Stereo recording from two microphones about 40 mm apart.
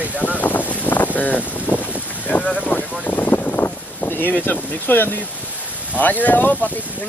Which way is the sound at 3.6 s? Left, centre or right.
Left.